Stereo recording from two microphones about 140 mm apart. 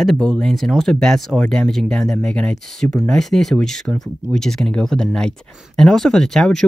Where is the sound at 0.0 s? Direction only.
5° left (ahead or behind).